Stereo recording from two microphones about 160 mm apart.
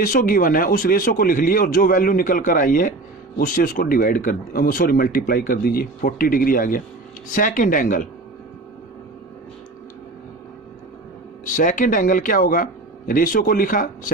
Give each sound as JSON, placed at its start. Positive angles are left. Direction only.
{"t": 0.0, "sound": "speech", "side_deg": 60}
{"t": 11.5, "sound": "speech", "side_deg": 55}